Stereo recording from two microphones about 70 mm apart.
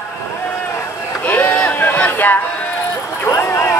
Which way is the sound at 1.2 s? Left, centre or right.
Left.